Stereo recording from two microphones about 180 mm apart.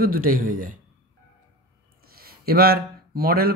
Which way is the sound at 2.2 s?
60° right (ahead or behind).